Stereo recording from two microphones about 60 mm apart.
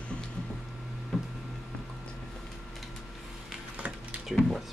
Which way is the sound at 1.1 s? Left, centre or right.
Centre.